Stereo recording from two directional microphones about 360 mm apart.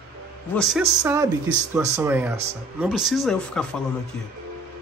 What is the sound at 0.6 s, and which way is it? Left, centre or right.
A man's voice, centre.